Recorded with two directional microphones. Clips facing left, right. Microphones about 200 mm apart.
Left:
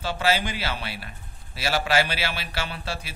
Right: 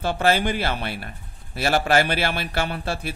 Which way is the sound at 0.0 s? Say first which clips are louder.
Right 4 dB; 55° right (ahead or behind).